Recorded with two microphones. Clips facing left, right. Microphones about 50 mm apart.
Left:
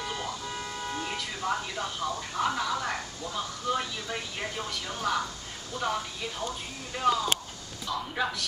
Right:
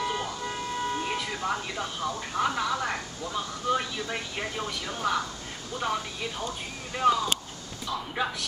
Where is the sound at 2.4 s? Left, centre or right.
Centre.